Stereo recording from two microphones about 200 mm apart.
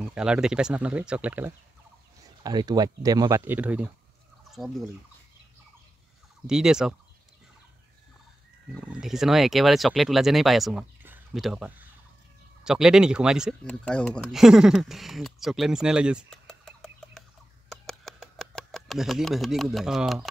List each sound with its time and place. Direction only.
0.1 s speech: 5° right (ahead or behind)
2.4 s speech: 20° right (ahead or behind)
4.5 s fowl: centre (ahead or behind)
6.4 s speech: 5° right (ahead or behind)
8.8 s speech: 5° right (ahead or behind)
17.6 s a sound: centre (ahead or behind)